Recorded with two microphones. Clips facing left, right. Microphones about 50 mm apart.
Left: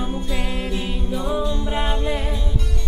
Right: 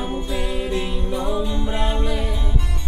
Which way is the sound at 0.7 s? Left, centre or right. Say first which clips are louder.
Right 2 dB; centre.